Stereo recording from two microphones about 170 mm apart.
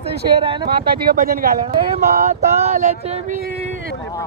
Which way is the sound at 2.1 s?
45° right (ahead or behind).